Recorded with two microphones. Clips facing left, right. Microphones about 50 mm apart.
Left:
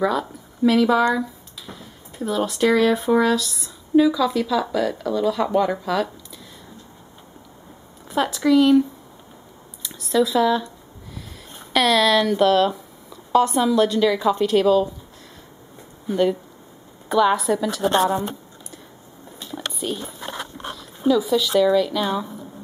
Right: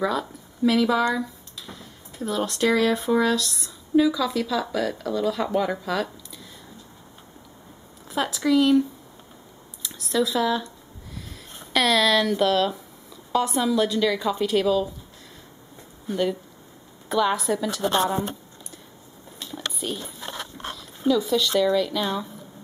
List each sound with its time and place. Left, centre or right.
0.0 s speech: centre
8.1 s a woman's voice: centre
11.7 s a woman's voice: centre
16.1 s a woman's voice: centre
19.4 s a sound: centre
20.2 s dog: left
20.5 s speech: centre